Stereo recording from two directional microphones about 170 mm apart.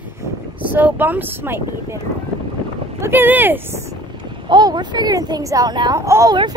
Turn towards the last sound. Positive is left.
turn(degrees=-15)  # may be behind; listen again after turning